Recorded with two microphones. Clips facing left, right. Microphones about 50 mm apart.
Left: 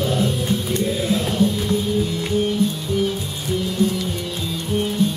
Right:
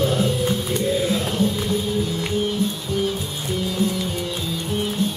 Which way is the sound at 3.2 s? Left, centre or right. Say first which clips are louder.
Left 1 dB; right.